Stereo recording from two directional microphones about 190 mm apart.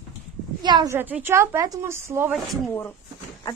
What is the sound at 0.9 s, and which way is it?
A woman's voice, 10° right (ahead or behind).